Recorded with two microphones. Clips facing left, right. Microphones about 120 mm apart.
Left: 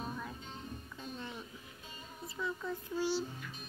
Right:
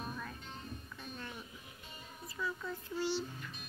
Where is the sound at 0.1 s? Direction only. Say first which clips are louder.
Left 2 dB; 20° left (ahead or behind).